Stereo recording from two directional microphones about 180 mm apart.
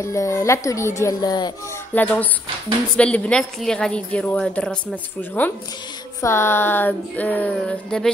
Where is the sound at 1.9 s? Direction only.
10° left (ahead or behind).